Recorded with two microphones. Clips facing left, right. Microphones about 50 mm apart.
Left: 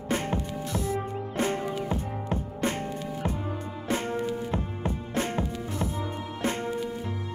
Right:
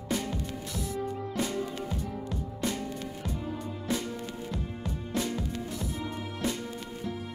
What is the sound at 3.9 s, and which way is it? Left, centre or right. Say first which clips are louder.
Music: left 6 dB; left.